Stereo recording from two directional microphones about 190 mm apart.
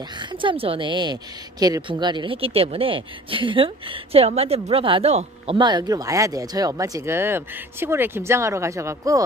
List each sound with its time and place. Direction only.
0.2 s a woman's voice: 25° right (ahead or behind)